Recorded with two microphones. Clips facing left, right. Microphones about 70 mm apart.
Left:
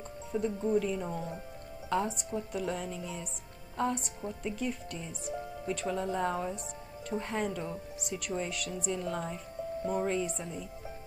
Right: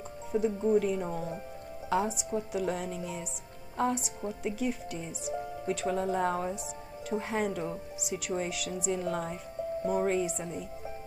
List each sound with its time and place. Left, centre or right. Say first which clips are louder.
0.3 s speech: right 4 dB; centre
0.7 s speech: right 3 dB; right
1.1 s speech: right 2 dB; centre